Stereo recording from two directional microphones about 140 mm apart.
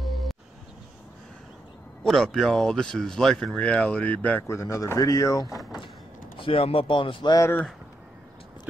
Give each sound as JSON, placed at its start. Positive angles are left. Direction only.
{"t": 0.0, "sound": "music", "side_deg": 0}
{"t": 2.0, "sound": "speech", "side_deg": 0}
{"t": 4.6, "sound": "speech", "side_deg": 20}
{"t": 6.3, "sound": "speech", "side_deg": 40}